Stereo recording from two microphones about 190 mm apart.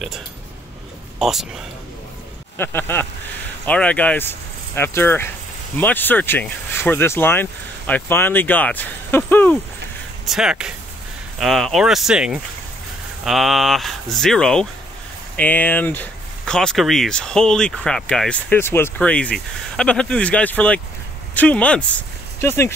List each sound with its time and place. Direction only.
1.2 s speech: centre (ahead or behind)
2.5 s speech: 10° left (ahead or behind)
10.2 s speech: 5° right (ahead or behind); by 22.8 s 15° left (ahead or behind)